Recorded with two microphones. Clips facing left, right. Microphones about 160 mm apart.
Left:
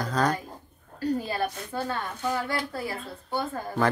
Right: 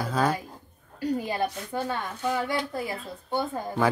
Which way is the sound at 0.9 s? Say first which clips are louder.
Even; 15° right (ahead or behind).